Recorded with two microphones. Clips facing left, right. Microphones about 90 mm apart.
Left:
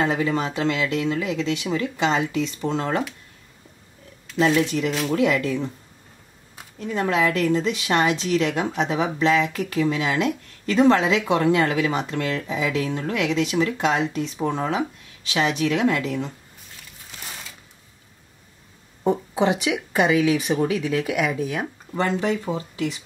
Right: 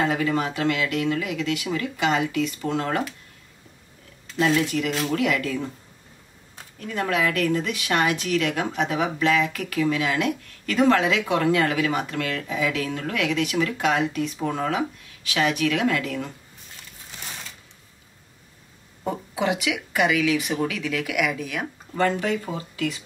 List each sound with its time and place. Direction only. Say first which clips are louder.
0.0 s a woman's voice: left 1 dB; 25° left (ahead or behind)
4.6 s a woman's voice: left 2 dB; 25° left (ahead or behind)
6.8 s a woman's voice: left 3 dB; 30° left (ahead or behind)
19.0 s a woman's voice: left 5 dB; 30° left (ahead or behind)